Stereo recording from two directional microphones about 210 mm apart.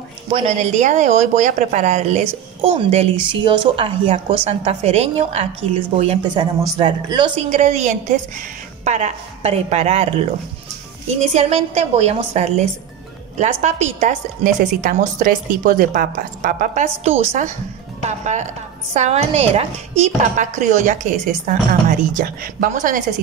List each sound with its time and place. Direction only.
0.3 s speech: 30° right (ahead or behind)
7.4 s a woman's voice: 35° right (ahead or behind)
11.3 s a woman's voice: 30° right (ahead or behind)